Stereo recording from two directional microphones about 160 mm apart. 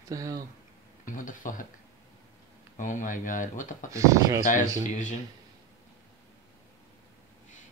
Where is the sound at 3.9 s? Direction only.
20° right (ahead or behind).